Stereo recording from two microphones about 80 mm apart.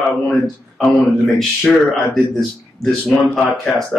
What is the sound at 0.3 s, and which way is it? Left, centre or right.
Speech, centre.